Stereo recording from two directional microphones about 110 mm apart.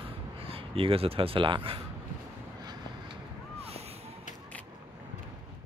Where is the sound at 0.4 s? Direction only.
60° right (ahead or behind).